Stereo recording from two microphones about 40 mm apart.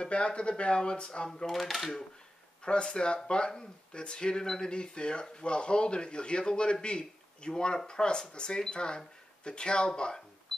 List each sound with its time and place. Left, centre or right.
0.0 s speech: left
1.4 s speech: centre
2.6 s speech: left